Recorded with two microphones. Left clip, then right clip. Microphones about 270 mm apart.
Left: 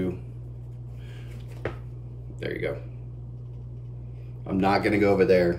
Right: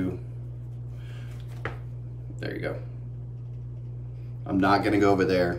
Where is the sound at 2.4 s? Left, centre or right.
Right.